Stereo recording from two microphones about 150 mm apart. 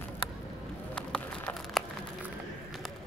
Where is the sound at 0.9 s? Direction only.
5° left (ahead or behind).